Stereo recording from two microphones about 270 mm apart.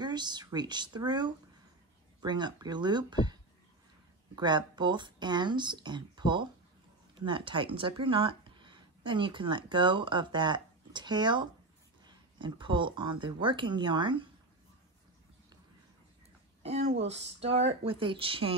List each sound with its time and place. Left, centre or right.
0.0 s speech: centre
4.4 s speech: centre
16.6 s speech: right